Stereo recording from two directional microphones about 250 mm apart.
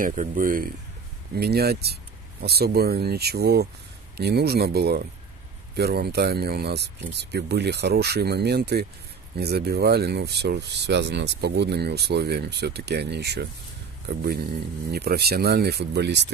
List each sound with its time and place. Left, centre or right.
0.0 s speech: right